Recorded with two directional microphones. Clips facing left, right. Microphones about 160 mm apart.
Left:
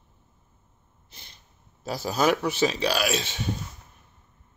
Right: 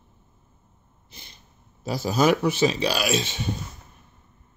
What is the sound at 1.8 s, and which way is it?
A man's voice, centre (ahead or behind).